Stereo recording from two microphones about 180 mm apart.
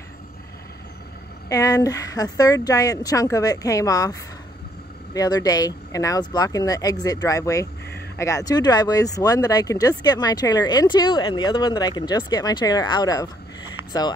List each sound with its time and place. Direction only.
1.5 s speech: 20° left (ahead or behind)